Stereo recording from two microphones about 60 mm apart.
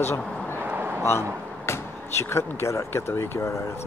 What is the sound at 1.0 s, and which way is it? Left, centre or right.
Speech, left.